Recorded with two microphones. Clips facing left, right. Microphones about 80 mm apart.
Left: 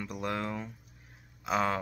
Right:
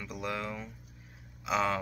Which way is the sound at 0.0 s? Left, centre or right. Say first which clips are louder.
Left 2 dB; left.